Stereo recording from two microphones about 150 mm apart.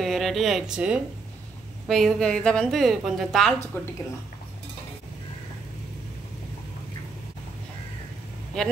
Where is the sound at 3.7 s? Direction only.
15° left (ahead or behind).